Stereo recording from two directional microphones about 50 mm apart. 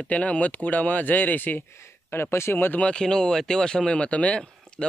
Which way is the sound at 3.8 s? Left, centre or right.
Left.